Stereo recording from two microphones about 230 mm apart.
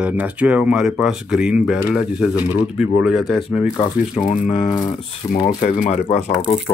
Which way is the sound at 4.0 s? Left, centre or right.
Left.